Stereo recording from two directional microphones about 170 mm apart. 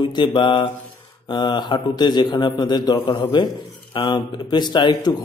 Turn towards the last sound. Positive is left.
turn(degrees=25)  # may be behind; listen again after turning